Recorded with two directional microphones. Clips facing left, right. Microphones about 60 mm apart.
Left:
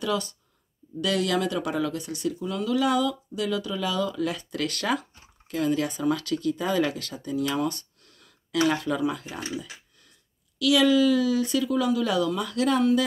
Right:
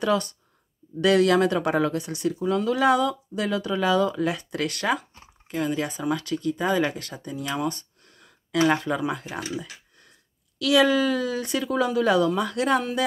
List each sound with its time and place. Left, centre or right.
0.0 s speech: right
10.6 s speech: right